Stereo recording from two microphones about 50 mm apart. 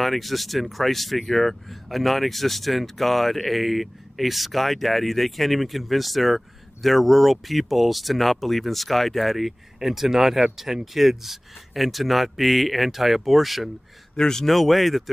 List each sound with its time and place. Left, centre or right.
0.0 s speech: centre
14.1 s speech: centre